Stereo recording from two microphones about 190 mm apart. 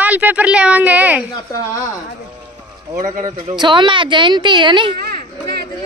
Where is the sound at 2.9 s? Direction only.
40° right (ahead or behind).